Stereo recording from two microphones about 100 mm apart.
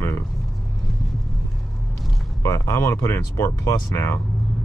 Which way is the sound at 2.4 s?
30° left (ahead or behind).